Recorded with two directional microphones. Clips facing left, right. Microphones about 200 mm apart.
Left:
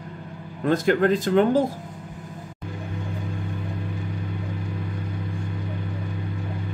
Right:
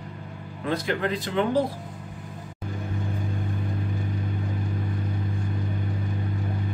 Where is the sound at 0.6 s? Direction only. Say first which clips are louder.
Left 7 dB; 45° left (ahead or behind).